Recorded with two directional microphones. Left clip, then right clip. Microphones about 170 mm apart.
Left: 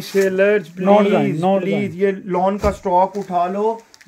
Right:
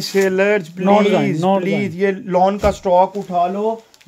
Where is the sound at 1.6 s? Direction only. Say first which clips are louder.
Right 1 dB; 65° right (ahead or behind).